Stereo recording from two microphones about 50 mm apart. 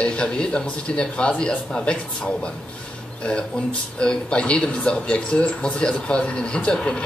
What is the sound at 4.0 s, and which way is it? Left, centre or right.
Speech, left.